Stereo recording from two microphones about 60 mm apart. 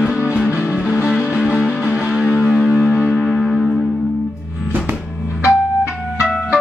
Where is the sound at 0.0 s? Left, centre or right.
Centre.